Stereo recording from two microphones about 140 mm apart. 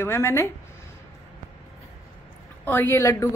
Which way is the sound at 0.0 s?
20° left (ahead or behind).